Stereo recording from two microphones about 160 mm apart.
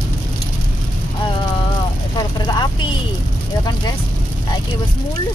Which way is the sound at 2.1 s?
25° left (ahead or behind).